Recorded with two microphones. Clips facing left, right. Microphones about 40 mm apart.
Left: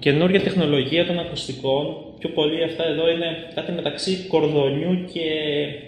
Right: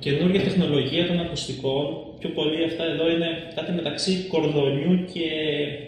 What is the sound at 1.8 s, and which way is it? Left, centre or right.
Speech, centre.